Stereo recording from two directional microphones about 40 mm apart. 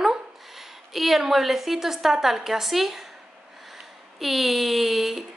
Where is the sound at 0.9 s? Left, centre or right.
Centre.